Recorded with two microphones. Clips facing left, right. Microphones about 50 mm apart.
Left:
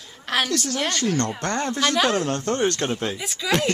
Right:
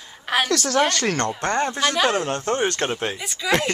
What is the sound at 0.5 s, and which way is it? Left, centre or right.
Speech, right.